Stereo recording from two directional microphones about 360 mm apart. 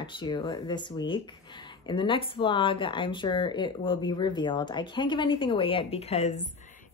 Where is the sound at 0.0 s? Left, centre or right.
Centre.